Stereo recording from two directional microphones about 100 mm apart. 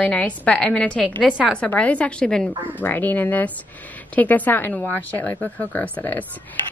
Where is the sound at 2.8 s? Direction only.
20° left (ahead or behind).